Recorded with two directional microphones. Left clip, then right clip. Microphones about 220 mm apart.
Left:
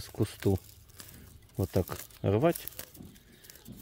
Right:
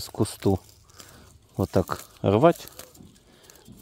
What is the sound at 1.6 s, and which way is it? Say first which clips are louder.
Speech: right 7 dB; 25° right (ahead or behind).